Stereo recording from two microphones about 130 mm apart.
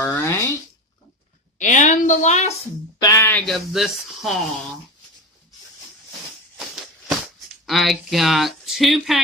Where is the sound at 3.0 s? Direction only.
25° left (ahead or behind).